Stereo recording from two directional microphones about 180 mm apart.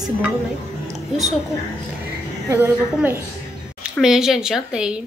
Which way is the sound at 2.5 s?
10° right (ahead or behind).